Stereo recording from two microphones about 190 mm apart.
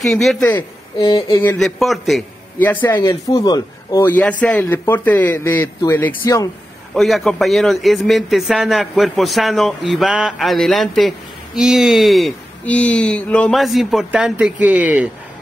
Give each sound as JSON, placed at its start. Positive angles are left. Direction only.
{"t": 0.0, "sound": "a man's voice", "side_deg": 0}
{"t": 0.6, "sound": "speech", "side_deg": 20}
{"t": 1.6, "sound": "speech", "side_deg": 0}
{"t": 6.9, "sound": "a man's voice", "side_deg": 0}